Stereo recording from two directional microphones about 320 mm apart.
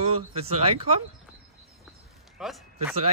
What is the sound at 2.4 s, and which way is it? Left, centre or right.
Speech, centre.